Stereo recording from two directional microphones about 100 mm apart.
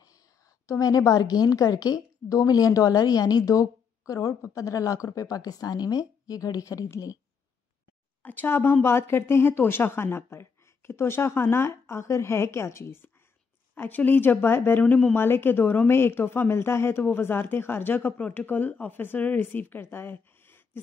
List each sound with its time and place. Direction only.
0.7 s a woman's voice: 35° left (ahead or behind)
8.2 s speech: 20° left (ahead or behind)